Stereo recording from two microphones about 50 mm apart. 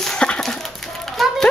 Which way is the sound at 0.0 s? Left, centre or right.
Centre.